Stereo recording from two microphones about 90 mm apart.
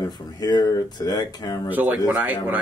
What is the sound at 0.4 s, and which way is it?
Speech, 50° left (ahead or behind).